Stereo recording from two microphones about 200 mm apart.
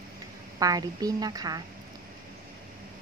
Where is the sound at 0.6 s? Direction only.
20° right (ahead or behind).